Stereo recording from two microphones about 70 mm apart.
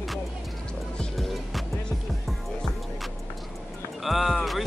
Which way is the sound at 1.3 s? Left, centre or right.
Centre.